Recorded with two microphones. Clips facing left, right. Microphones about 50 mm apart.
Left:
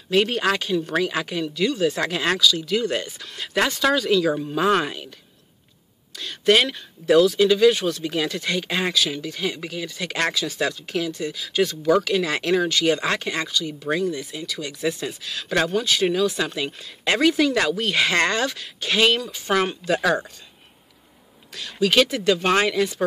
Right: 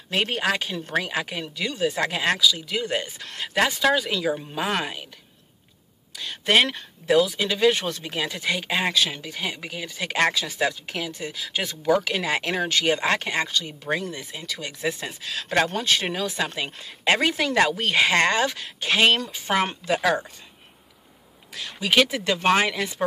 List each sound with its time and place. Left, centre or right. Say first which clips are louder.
0.1 s speech: left 4 dB; centre
4.6 s speech: left 6 dB; centre
6.1 s a sound: left 8 dB; centre
6.5 s speech: left 1 dB; right
7.1 s speech: left 5 dB; centre
7.7 s speech: left 4 dB; right; by 8.9 s centre
8.9 s speech: left 1 dB; right
9.3 s speech: left 3 dB; centre
15.7 s speech: left 4 dB; right
17.9 s speech: right 2 dB; centre
21.5 s speech: left 2 dB; centre